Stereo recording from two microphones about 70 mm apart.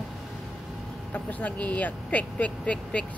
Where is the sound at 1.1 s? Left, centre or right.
Left.